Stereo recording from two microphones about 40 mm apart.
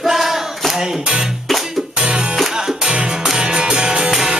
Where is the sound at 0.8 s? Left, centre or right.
Centre.